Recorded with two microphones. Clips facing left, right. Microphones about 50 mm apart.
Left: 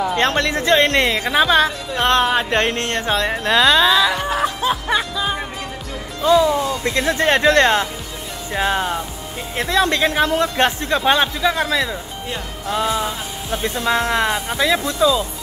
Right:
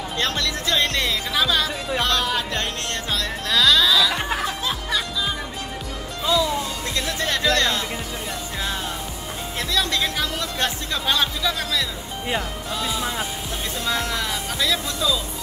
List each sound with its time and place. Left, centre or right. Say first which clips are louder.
0.1 s speech: left 7 dB; left
4.4 s music: left 6 dB; left
6.2 s speech: left 7 dB; left